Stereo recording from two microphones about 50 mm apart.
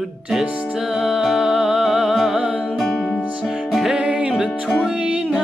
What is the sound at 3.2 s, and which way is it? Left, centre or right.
Music, right.